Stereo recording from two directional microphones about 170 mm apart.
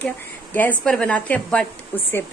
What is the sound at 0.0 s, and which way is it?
A woman's voice, 10° left (ahead or behind).